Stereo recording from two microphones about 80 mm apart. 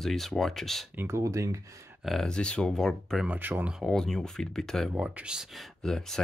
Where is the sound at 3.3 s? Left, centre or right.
Right.